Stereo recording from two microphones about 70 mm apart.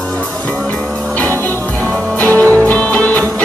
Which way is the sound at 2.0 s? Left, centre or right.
Centre.